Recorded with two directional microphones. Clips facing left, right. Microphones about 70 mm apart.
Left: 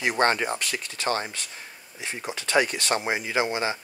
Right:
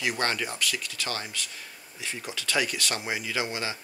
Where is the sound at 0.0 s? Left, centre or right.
Left.